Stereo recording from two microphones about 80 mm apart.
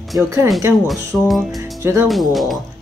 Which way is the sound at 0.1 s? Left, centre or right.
Right.